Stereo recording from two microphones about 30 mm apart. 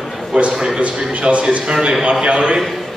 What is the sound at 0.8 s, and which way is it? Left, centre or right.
Speech, right.